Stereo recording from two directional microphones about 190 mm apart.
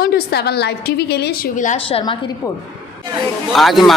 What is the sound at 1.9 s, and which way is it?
Speech, 30° left (ahead or behind).